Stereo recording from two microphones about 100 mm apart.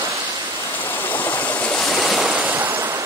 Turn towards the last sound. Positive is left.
turn(degrees=0)  # may be behind; listen again after turning